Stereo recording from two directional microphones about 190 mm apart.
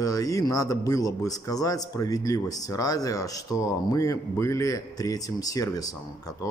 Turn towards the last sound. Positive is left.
turn(degrees=20)  # may be behind; listen again after turning